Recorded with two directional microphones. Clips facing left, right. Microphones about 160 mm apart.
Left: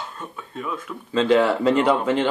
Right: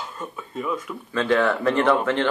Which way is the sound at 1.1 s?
20° left (ahead or behind).